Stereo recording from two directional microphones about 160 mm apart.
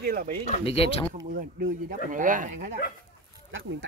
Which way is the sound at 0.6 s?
35° left (ahead or behind).